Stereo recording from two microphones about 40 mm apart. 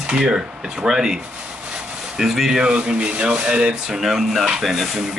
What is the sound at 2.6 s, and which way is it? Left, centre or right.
Speech, right.